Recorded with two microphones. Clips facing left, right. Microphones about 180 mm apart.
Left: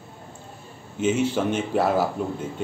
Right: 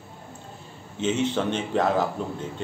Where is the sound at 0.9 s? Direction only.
10° left (ahead or behind).